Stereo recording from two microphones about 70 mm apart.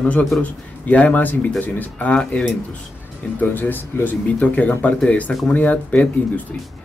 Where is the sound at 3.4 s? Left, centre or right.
Left.